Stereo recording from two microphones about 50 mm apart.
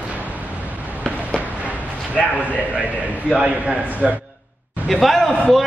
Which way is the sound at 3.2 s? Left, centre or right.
Centre.